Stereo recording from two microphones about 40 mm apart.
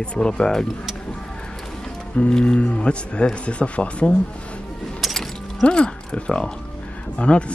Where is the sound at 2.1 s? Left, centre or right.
Left.